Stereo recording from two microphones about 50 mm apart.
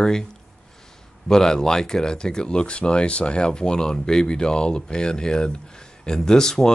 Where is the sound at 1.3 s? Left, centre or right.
Centre.